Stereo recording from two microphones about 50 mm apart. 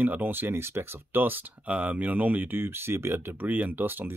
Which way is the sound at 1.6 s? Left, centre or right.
Right.